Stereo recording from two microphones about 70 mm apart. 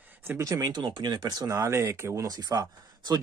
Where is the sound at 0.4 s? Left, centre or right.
Right.